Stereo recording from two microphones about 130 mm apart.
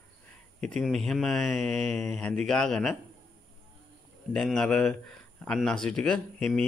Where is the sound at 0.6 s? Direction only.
5° left (ahead or behind).